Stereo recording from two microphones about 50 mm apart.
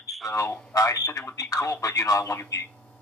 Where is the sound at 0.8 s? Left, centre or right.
Left.